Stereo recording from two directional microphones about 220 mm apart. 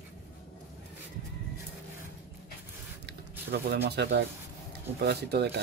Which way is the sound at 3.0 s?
45° right (ahead or behind).